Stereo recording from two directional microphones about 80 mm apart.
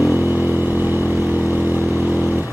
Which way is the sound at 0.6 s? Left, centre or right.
Right.